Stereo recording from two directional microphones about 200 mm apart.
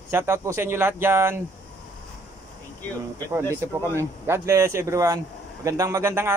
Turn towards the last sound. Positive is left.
turn(degrees=-10)  # may be behind; listen again after turning